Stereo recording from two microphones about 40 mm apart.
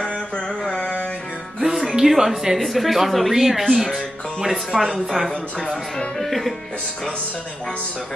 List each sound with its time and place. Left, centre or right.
0.7 s music: left
1.6 s speech: centre
4.9 s speech: centre